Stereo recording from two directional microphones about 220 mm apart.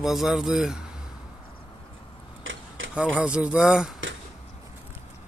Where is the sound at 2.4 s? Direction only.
60° right (ahead or behind).